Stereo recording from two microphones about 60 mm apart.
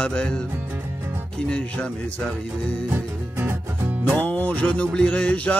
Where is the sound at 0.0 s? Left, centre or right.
Centre.